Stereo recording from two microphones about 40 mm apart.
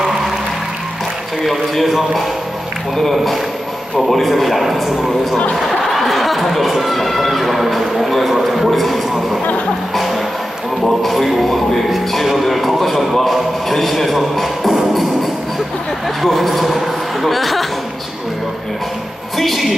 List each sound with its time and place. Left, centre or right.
1.4 s a man's voice: centre
9.9 s music: centre
10.9 s speech: centre
16.2 s speech: centre
19.3 s speech: centre